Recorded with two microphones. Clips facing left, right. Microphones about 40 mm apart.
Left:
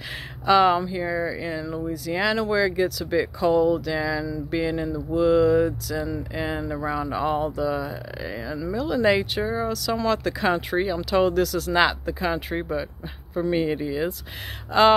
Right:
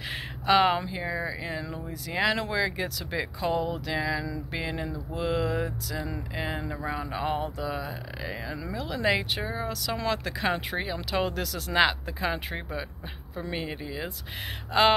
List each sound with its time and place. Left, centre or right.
0.5 s speech: centre
13.5 s speech: centre
14.7 s speech: centre